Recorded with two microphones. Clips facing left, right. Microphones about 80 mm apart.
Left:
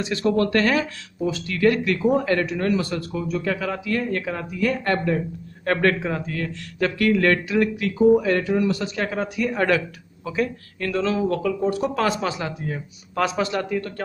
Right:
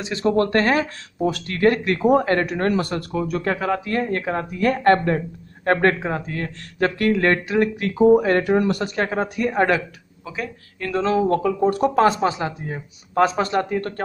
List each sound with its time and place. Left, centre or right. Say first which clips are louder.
0.0 s a man's voice: right 1 dB; right
1.2 s speech: right 2 dB; right
1.6 s a man's voice: right 1 dB; right
3.4 s a man's voice: right 3 dB; right
5.7 s a man's voice: right 2 dB; right
9.7 s speech: even; centre
11.0 s a man's voice: right 4 dB; right
12.0 s a man's voice: right 5 dB; right
13.7 s speech: right 2 dB; right